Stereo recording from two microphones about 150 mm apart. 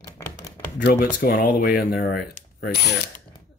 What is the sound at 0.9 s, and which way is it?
Speech, 90° left.